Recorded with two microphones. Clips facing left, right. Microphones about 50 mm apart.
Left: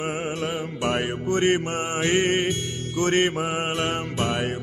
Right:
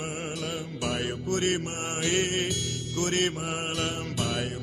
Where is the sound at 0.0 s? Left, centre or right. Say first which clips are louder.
Left 6 dB; left.